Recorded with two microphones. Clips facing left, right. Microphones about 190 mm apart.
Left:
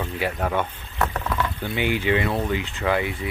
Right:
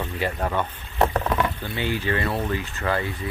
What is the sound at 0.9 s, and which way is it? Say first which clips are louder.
Patter: right 4 dB; 30° right (ahead or behind).